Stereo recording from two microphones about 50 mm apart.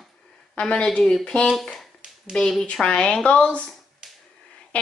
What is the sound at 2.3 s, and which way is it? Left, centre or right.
Speech, centre.